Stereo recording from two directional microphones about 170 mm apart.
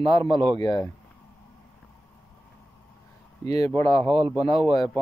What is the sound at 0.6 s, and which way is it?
Speech, 20° left (ahead or behind).